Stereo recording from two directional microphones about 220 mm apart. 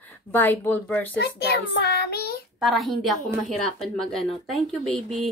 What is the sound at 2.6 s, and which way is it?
A woman's voice, centre (ahead or behind).